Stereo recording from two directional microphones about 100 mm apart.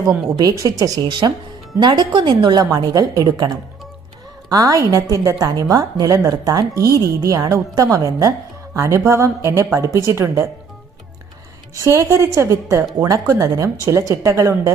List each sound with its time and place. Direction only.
0.4 s a woman's voice: 40° right (ahead or behind)
1.0 s a woman's voice: 50° right (ahead or behind); by 10.5 s 25° right (ahead or behind)
11.8 s a woman's voice: 30° right (ahead or behind)